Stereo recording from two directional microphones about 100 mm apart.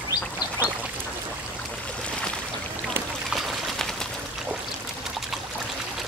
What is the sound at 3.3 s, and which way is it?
Pour, centre (ahead or behind).